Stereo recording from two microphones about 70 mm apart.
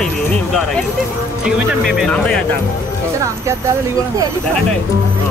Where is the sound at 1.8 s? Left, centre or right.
Centre.